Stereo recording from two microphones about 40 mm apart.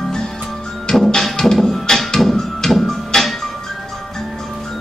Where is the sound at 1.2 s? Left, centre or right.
Centre.